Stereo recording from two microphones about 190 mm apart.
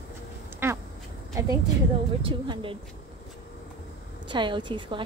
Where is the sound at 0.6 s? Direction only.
15° right (ahead or behind).